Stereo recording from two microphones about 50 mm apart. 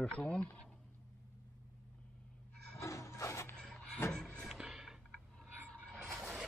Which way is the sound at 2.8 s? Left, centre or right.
Left.